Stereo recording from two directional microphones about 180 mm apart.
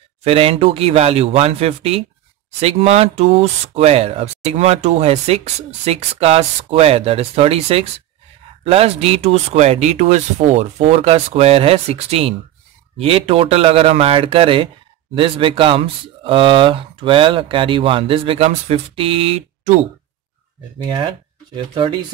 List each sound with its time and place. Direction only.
0.2 s speech: 35° right (ahead or behind)
20.8 s speech: 25° right (ahead or behind)